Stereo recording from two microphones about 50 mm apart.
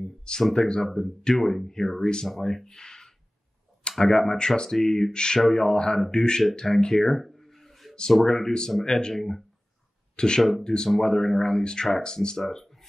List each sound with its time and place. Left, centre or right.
0.2 s speech: centre
6.5 s a sound: centre
8.1 s speech: centre
10.1 s speech: centre
10.9 s speech: centre